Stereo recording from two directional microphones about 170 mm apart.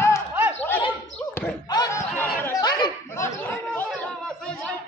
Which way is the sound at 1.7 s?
25° left (ahead or behind).